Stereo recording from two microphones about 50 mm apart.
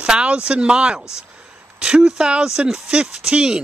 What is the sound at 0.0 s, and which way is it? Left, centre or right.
Speech, centre.